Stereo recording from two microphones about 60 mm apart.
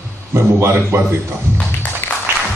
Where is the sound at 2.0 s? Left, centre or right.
Left.